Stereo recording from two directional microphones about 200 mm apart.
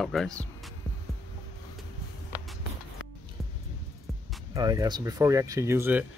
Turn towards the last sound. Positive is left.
turn(degrees=-10)  # may be behind; listen again after turning